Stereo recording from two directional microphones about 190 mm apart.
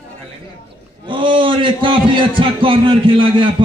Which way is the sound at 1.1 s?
25° right (ahead or behind).